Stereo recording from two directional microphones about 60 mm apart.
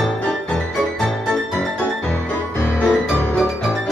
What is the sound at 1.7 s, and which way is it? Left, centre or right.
Music, left.